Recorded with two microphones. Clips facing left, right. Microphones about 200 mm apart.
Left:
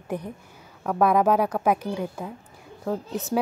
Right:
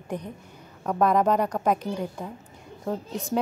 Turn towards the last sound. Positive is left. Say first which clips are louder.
# left 2 dB
turn(degrees=5)  # may be behind; listen again after turning